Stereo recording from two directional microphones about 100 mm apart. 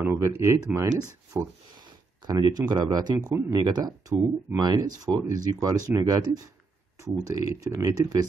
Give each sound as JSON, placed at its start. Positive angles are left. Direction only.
{"t": 0.0, "sound": "speech", "side_deg": -30}
{"t": 1.8, "sound": "speech", "side_deg": -45}